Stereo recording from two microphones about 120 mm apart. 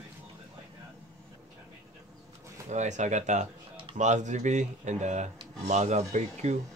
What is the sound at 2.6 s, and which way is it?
Speech, 80° right.